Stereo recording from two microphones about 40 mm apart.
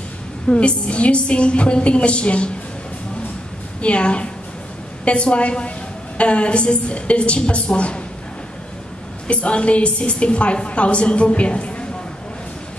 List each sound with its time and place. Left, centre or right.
0.5 s a woman's voice: left
3.8 s a woman's voice: left
9.3 s a woman's voice: left